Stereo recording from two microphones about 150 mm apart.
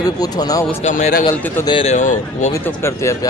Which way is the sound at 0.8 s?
50° left (ahead or behind).